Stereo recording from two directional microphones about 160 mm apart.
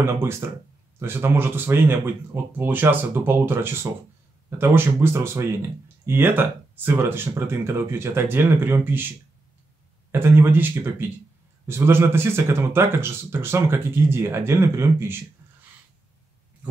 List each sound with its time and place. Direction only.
0.0 s speech: 15° right (ahead or behind)
10.1 s speech: 15° right (ahead or behind)